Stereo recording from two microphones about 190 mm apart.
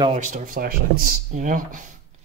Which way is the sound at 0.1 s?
40° right (ahead or behind).